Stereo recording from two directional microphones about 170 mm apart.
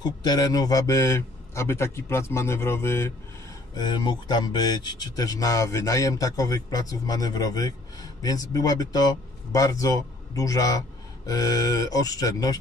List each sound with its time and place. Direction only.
0.0 s a man's voice: 25° left (ahead or behind)
3.7 s speech: 25° left (ahead or behind)